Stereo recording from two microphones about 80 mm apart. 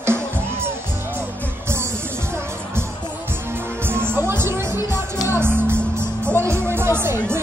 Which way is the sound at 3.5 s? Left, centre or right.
Right.